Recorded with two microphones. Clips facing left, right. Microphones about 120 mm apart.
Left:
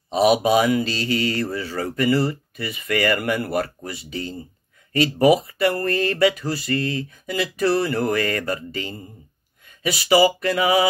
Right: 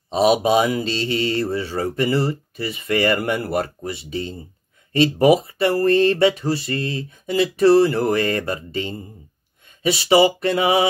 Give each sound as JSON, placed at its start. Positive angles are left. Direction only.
{"t": 0.1, "sound": "speech", "side_deg": -30}